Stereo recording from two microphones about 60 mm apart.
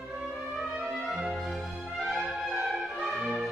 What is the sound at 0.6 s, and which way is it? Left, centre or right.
Music, centre.